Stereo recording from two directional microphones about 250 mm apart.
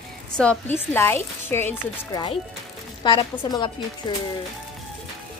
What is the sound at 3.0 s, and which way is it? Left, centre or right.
Speech, centre.